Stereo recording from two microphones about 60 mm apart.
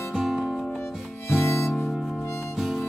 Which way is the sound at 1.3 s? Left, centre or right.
Left.